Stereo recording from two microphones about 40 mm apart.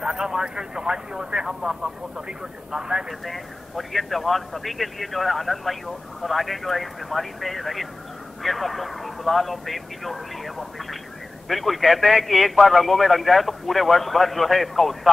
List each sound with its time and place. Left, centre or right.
0.0 s speech: centre
3.3 s speech: centre